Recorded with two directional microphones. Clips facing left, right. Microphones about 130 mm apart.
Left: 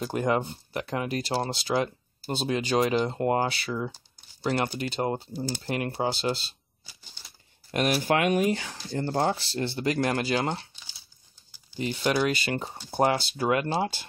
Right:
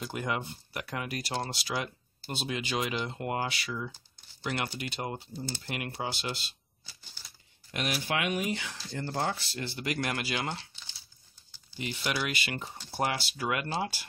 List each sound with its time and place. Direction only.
0.0 s speech: 35° left (ahead or behind)
7.7 s speech: 45° left (ahead or behind)
8.7 s speech: 30° left (ahead or behind)
11.8 s speech: 35° left (ahead or behind)